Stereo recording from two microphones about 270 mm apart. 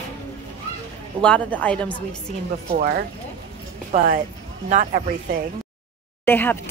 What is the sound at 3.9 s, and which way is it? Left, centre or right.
Speech, right.